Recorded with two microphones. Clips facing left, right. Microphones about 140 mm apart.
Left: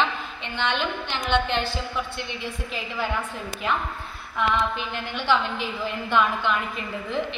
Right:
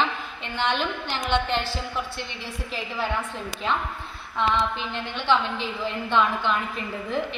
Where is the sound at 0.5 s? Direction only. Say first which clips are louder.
Right 1 dB; 40° right (ahead or behind).